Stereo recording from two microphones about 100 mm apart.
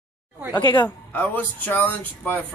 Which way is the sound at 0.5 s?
40° left (ahead or behind).